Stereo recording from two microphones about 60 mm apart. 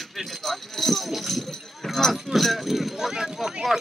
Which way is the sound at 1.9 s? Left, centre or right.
Centre.